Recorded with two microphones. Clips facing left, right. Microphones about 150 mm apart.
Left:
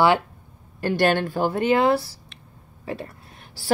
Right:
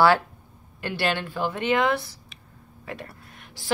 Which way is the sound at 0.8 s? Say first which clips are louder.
Left 7 dB; 45° left (ahead or behind).